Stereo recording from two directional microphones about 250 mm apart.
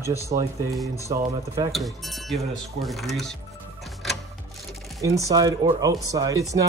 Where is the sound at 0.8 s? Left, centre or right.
Centre.